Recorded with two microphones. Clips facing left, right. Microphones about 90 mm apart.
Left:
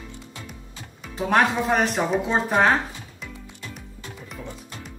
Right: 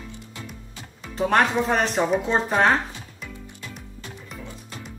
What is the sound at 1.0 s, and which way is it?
Speech, 5° left (ahead or behind).